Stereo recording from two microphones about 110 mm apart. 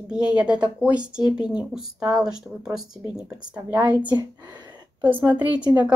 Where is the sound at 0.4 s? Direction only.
10° right (ahead or behind).